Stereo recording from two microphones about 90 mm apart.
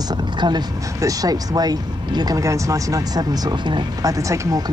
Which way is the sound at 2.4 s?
35° right (ahead or behind).